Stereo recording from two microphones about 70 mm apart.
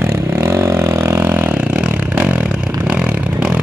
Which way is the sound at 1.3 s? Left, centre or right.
Right.